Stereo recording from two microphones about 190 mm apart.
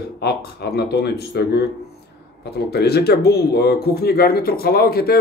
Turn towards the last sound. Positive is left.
turn(degrees=55)  # may be behind; listen again after turning